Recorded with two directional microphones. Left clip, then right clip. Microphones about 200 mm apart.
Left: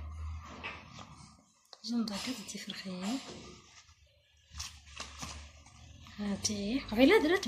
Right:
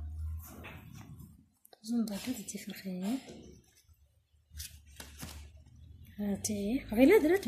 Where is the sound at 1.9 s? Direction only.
60° right (ahead or behind).